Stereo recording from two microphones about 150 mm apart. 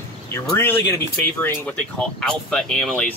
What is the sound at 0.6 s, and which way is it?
Speech, 15° left (ahead or behind).